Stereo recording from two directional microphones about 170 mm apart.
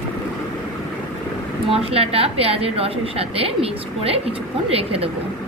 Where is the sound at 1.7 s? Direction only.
35° right (ahead or behind).